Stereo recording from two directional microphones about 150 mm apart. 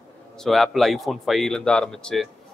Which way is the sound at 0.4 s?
Centre (ahead or behind).